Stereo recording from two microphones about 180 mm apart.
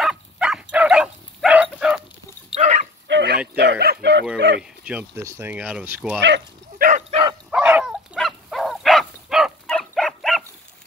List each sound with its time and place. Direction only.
0.0 s dog: centre (ahead or behind)
2.5 s dog: 40° right (ahead or behind)
3.1 s a sound: 70° right (ahead or behind)
3.5 s bow-wow: 65° right (ahead or behind)
4.4 s speech: 75° right (ahead or behind)
4.8 s speech: 10° right (ahead or behind)
6.8 s bow-wow: 40° right (ahead or behind)
7.5 s dog: 5° right (ahead or behind)